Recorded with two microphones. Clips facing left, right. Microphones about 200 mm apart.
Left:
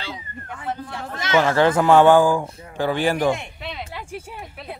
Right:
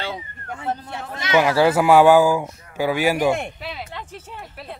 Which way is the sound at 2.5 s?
25° left (ahead or behind).